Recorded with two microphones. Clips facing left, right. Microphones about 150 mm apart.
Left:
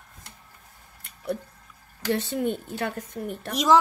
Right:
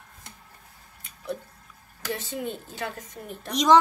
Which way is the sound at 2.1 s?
60° left (ahead or behind).